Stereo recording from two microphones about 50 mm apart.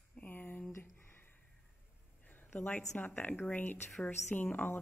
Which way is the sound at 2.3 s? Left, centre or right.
Left.